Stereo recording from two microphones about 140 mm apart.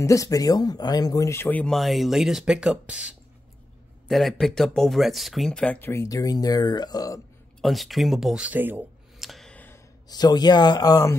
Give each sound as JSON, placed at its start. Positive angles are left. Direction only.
{"t": 0.0, "sound": "speech", "side_deg": 25}
{"t": 5.8, "sound": "speech", "side_deg": 20}
{"t": 7.6, "sound": "speech", "side_deg": 0}
{"t": 9.2, "sound": "a sound", "side_deg": 0}
{"t": 10.0, "sound": "speech", "side_deg": 30}